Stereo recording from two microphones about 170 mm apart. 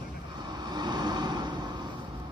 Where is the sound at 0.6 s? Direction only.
25° right (ahead or behind).